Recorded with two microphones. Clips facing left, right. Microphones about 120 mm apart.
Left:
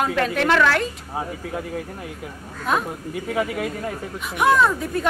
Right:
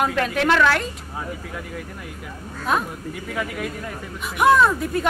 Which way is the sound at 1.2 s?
30° left (ahead or behind).